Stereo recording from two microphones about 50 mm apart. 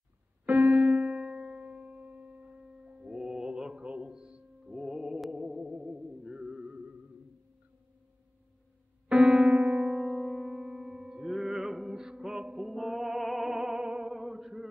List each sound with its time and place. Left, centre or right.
0.5 s music: right
9.1 s music: centre
9.9 s music: centre
12.7 s music: centre
14.1 s a sound: centre